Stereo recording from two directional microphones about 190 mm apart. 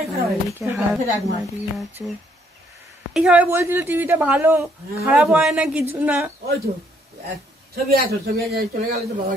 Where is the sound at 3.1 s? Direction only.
5° right (ahead or behind).